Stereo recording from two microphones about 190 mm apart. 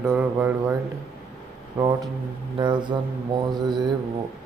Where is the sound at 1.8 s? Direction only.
20° right (ahead or behind).